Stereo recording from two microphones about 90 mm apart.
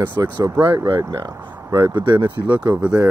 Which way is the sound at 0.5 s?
30° right (ahead or behind).